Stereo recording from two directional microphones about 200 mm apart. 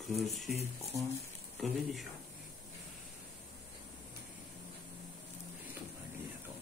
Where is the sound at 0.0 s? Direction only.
Centre (ahead or behind).